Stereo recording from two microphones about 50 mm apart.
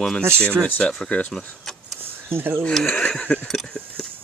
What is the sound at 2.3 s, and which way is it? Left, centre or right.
Speech, right.